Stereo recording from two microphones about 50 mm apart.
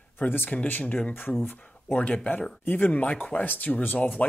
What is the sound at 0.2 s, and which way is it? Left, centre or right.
Speech, left.